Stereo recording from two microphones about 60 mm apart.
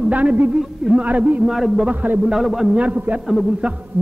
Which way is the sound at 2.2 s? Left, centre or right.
Centre.